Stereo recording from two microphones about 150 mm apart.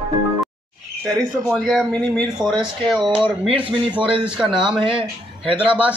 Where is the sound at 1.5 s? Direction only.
5° left (ahead or behind).